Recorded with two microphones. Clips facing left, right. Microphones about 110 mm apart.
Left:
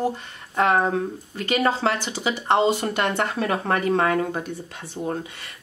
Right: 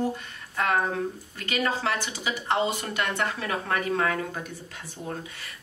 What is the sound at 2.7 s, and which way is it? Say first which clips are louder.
Speech: left 6 dB; 65° left (ahead or behind).